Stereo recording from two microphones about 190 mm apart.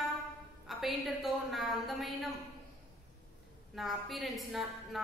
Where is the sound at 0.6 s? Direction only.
Centre (ahead or behind).